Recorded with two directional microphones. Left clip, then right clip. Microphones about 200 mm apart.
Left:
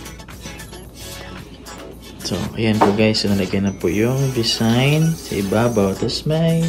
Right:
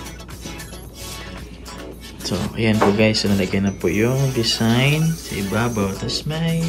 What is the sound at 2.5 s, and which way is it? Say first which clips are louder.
Speech: left 1 dB; 15° left (ahead or behind).